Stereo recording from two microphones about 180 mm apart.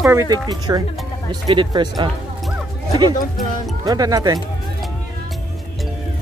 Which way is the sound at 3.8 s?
20° right (ahead or behind).